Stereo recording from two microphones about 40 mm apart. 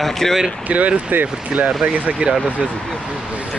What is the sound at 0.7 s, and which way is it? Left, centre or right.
Speech, right.